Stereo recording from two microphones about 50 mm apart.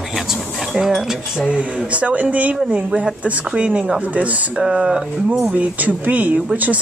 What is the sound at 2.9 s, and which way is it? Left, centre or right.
Speech, centre.